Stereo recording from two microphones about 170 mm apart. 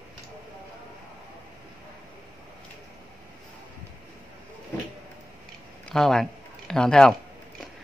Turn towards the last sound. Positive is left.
turn(degrees=5)  # may be behind; listen again after turning